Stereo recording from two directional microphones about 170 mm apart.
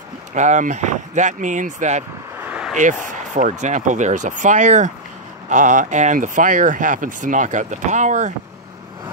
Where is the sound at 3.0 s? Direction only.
50° right (ahead or behind).